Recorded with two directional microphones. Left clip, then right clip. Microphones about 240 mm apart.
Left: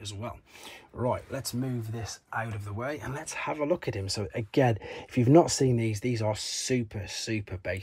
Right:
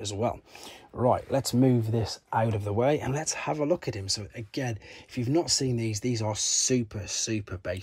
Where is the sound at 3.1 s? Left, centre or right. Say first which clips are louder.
Right 3 dB; centre.